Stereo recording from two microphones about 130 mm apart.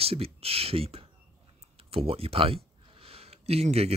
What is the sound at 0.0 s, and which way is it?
Speech, 50° right (ahead or behind).